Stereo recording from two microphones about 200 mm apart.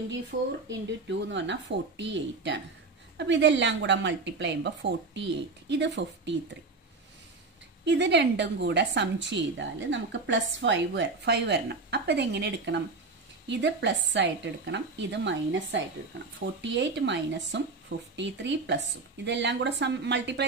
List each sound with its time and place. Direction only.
0.3 s speech: 45° right (ahead or behind)
0.7 s a woman's voice: 65° right (ahead or behind)
7.8 s a woman's voice: 60° right (ahead or behind)